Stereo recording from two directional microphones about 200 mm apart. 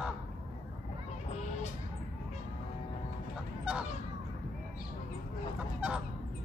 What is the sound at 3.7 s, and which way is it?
Honk, 5° right (ahead or behind).